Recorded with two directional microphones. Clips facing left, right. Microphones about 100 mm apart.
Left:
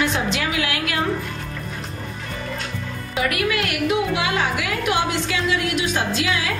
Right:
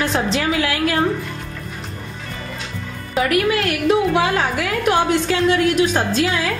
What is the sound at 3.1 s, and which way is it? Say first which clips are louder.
A woman's voice: right 5 dB; 35° right (ahead or behind).